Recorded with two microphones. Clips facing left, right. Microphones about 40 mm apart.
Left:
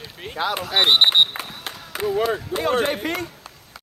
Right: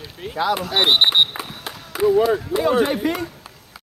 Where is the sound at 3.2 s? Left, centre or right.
Centre.